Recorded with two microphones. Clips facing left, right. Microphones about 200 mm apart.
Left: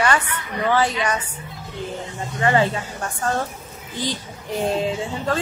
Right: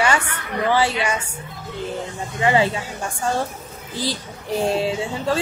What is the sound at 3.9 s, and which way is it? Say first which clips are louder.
Speech: right 1 dB; 35° right (ahead or behind).